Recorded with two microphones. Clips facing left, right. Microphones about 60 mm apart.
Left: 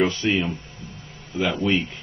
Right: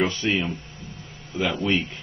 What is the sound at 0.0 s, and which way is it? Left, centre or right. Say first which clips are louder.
Speech: left 2 dB; centre.